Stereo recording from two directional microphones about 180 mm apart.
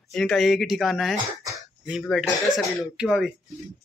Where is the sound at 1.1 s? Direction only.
20° right (ahead or behind).